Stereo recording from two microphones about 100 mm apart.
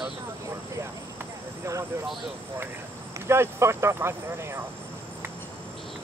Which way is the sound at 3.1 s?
25° right (ahead or behind).